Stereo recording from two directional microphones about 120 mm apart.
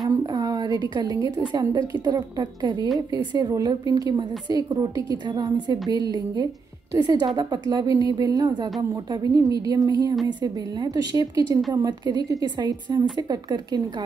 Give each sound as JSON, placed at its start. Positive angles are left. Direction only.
{"t": 0.1, "sound": "a woman's voice", "side_deg": -30}